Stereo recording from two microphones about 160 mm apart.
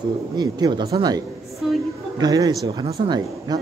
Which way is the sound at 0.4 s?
25° right (ahead or behind).